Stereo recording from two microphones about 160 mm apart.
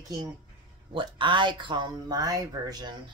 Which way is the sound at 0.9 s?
30° right (ahead or behind).